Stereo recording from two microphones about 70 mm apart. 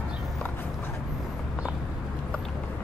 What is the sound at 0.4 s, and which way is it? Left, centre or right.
Horse, left.